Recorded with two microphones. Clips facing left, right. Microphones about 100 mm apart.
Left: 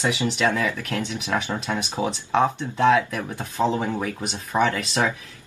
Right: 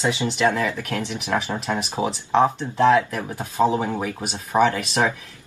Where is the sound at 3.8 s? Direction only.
25° right (ahead or behind).